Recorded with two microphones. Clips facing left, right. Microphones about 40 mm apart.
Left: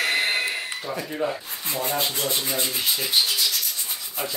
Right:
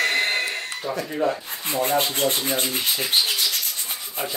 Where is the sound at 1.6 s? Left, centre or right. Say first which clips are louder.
Right 5 dB; right.